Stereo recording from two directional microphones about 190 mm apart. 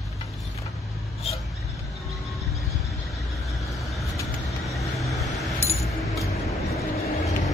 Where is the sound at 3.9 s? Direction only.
Centre (ahead or behind).